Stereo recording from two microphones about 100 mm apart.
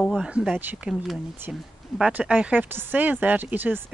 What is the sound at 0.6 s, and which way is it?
Speech, 20° right (ahead or behind).